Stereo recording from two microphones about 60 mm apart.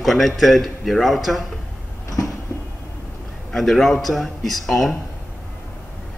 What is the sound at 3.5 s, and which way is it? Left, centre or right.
A man's voice, centre.